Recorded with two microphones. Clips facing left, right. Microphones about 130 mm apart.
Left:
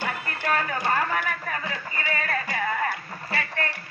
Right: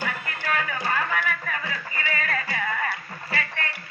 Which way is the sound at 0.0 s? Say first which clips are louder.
Left 1 dB; 35° left (ahead or behind).